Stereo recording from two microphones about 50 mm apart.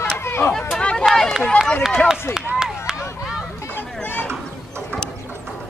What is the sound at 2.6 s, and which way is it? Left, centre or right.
Chop, centre.